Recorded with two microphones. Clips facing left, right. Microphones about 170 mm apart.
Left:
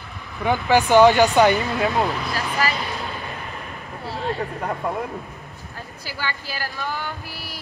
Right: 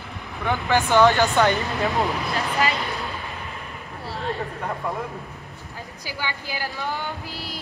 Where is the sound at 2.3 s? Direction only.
20° right (ahead or behind).